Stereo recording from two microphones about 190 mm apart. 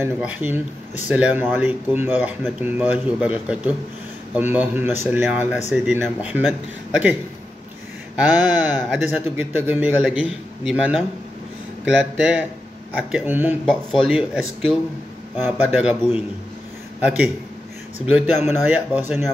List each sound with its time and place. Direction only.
0.0 s speech: 10° right (ahead or behind)
8.2 s speech: 5° right (ahead or behind)
15.6 s speech: 10° right (ahead or behind)
18.1 s speech: 10° right (ahead or behind)